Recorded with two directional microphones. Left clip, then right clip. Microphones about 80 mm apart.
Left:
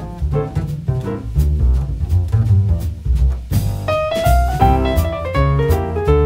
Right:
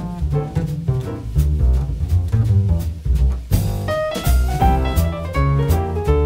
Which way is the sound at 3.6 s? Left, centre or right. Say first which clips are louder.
Left 3 dB; right.